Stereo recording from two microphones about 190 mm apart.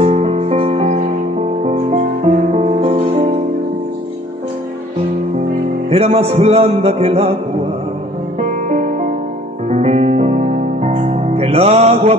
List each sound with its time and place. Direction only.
0.0 s music: 35° right (ahead or behind)
5.9 s music: 30° right (ahead or behind)
8.4 s music: 35° right (ahead or behind)